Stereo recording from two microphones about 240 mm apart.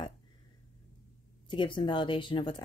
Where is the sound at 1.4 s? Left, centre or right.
Left.